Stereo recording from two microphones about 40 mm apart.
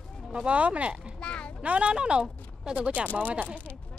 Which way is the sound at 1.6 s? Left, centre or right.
Right.